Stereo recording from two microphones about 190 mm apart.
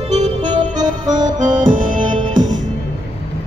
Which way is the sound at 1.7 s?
45° right (ahead or behind).